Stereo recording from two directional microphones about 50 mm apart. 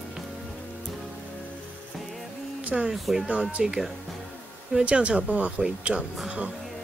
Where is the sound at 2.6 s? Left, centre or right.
Right.